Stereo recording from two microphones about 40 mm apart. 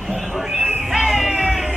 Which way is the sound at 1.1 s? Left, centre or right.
Centre.